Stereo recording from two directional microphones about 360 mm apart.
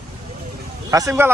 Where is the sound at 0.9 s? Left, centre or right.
Centre.